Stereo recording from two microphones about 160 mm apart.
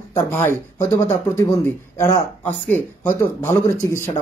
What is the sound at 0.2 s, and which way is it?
Speech, 15° left (ahead or behind).